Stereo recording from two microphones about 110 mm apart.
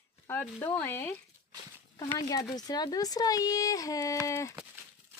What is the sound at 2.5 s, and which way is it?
Speech, 35° left (ahead or behind).